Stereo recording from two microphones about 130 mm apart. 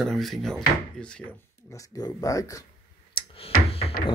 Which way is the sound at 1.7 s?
25° left (ahead or behind).